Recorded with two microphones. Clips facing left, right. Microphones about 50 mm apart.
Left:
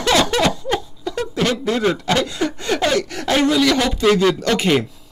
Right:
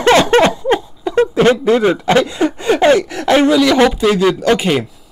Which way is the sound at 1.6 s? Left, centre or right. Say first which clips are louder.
Right 6 dB; centre.